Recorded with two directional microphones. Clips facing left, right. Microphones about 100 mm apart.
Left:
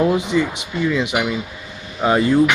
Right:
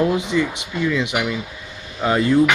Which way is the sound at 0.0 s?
15° left (ahead or behind).